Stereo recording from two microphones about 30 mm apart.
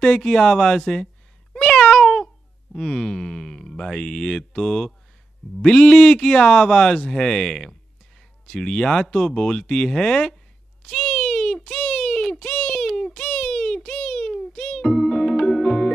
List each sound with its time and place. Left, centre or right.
0.0 s speech: left
1.5 s cat: centre
2.7 s speech: centre
10.8 s a sound: centre